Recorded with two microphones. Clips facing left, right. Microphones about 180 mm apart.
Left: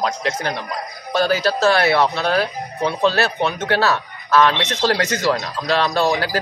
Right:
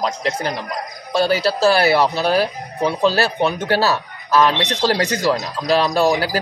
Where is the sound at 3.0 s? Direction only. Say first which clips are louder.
Right 1 dB; 35° right (ahead or behind).